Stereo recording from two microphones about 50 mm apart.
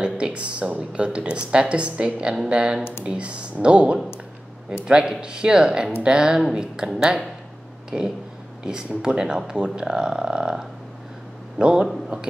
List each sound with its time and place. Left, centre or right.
0.0 s speech: right
2.8 s speech: left
3.1 s speech: right
7.9 s speech: right
8.6 s a man's voice: centre